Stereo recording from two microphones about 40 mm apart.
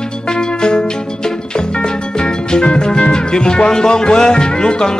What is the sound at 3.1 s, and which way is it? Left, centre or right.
Speech, centre.